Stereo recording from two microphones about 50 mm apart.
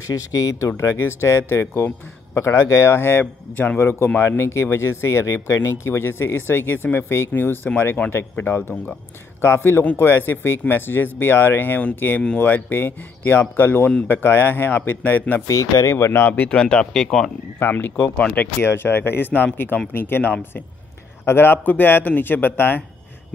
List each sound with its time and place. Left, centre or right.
0.0 s speech: left
0.9 s speech: left
3.0 s speech: left
4.5 s speech: left
8.0 s speech: left
8.4 s speech: left
9.4 s speech: left
15.5 s speech: left
16.5 s speech: centre
17.6 s speech: left
18.2 s speech: left
18.6 s speech: left
21.6 s speech: left